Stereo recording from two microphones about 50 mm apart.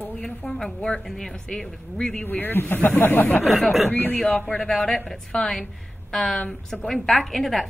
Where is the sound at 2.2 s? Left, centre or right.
Left.